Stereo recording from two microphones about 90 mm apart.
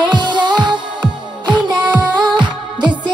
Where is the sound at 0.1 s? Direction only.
60° right (ahead or behind).